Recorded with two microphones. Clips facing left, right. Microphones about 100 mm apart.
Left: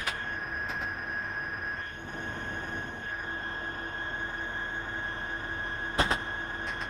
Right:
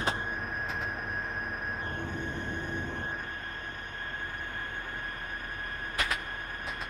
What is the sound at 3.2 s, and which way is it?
Train, 30° left (ahead or behind).